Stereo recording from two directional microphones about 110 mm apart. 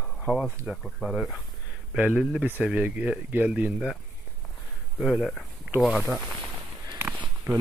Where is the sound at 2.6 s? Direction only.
10° right (ahead or behind).